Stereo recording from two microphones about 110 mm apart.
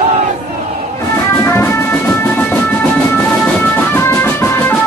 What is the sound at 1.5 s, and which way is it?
Music, 25° left (ahead or behind).